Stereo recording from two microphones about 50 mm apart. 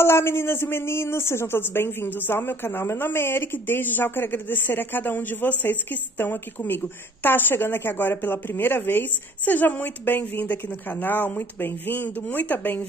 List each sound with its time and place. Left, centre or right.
0.0 s speech: left